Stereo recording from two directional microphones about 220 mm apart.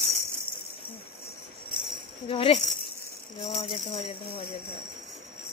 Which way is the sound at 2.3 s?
25° left (ahead or behind).